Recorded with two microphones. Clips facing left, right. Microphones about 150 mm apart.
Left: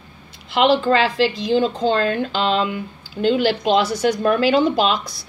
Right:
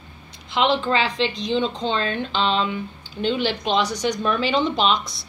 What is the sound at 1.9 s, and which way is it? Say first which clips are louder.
Speech: left 5 dB; 50° left (ahead or behind).